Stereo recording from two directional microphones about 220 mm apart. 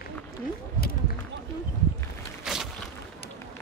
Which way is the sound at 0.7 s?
45° left (ahead or behind).